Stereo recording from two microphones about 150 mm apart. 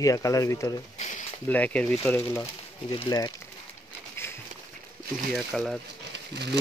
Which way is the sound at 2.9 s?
30° left (ahead or behind).